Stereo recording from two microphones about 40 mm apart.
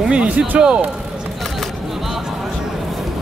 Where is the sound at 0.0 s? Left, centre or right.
Right.